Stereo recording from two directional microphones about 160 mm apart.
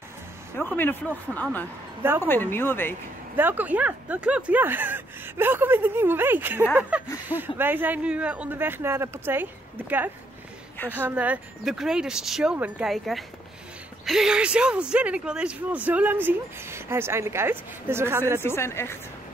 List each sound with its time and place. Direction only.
0.7 s speech: 10° left (ahead or behind)
3.3 s speech: 10° right (ahead or behind)
18.4 s speech: 15° left (ahead or behind)